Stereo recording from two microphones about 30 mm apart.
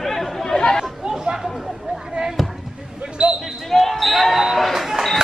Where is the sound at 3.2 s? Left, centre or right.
Right.